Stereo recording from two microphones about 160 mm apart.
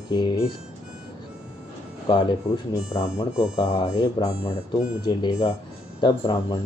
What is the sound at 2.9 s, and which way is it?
Speech, 30° left (ahead or behind).